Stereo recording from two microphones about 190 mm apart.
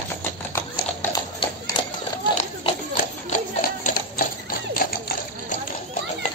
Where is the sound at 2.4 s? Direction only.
30° left (ahead or behind).